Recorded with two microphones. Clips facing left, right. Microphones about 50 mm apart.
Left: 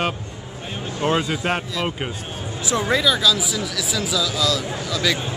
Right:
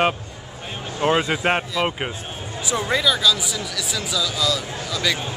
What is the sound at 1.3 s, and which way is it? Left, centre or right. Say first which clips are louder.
Speech: right 2 dB; right.